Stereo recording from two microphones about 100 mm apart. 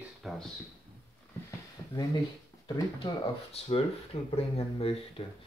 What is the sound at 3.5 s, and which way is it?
Speech, 80° left.